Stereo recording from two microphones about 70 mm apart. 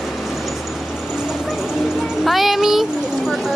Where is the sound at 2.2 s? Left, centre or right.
Centre.